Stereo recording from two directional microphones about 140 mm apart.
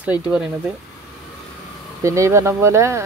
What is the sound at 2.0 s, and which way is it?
Speech, 20° right (ahead or behind).